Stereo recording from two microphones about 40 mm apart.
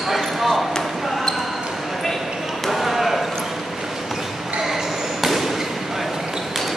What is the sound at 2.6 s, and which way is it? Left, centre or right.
Basketball bounce, centre.